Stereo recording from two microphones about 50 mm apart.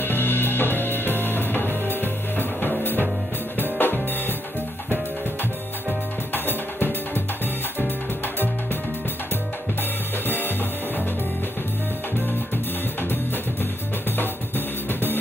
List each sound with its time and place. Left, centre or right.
0.0 s music: left
6.3 s music: left
10.2 s music: left
14.9 s music: left